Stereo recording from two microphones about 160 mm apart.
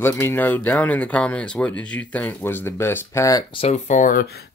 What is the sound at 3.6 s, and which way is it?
Speech, 45° left (ahead or behind).